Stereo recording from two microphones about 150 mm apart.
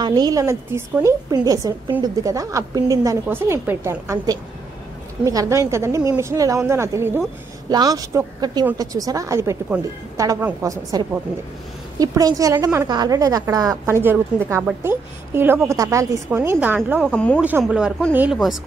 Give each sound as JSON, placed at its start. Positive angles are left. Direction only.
{"t": 0.0, "sound": "a woman's voice", "side_deg": -25}
{"t": 17.0, "sound": "speech", "side_deg": 5}
{"t": 17.4, "sound": "a woman's voice", "side_deg": -10}